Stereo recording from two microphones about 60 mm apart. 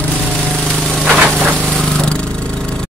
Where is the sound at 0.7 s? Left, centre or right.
Centre.